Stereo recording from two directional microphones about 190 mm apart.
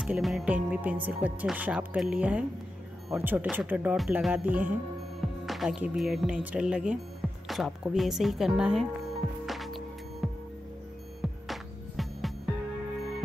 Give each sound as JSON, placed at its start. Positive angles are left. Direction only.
{"t": 0.0, "sound": "speech", "side_deg": -5}
{"t": 9.5, "sound": "music", "side_deg": 0}